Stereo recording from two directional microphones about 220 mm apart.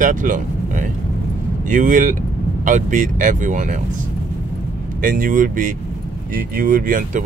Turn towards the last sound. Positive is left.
turn(degrees=-40)  # may be behind; listen again after turning